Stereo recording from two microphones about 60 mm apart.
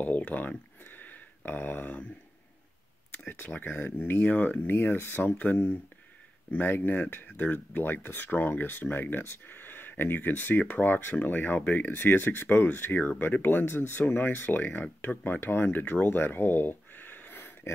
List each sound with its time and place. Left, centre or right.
0.0 s speech: left
3.5 s speech: left
11.9 s speech: left